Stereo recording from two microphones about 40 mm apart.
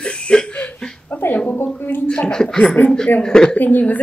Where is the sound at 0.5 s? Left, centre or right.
Left.